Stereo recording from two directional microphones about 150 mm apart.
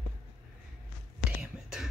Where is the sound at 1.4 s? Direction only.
5° right (ahead or behind).